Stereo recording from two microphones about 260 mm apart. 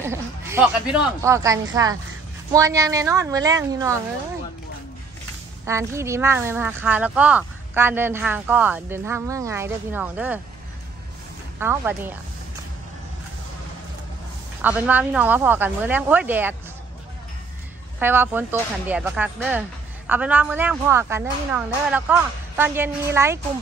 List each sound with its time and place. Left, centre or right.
0.0 s speech: centre
5.7 s speech: centre
11.6 s speech: centre
14.6 s speech: centre
17.9 s speech: centre